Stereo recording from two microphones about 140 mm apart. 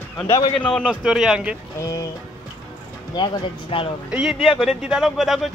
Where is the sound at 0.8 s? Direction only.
5° right (ahead or behind).